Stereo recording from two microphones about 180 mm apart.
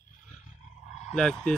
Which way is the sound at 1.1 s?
5° left (ahead or behind).